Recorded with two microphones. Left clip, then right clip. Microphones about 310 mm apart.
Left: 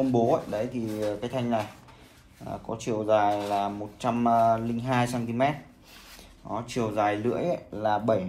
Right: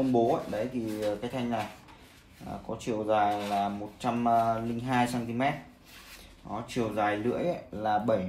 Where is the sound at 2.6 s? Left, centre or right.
Left.